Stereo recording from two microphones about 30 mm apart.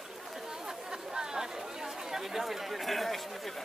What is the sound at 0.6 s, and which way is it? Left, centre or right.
Chatter, right.